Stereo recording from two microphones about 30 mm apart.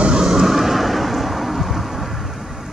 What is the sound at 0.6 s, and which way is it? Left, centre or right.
Thunder, centre.